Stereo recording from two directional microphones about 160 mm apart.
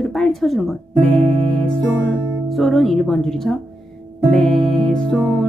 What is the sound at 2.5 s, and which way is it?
Speech, centre (ahead or behind).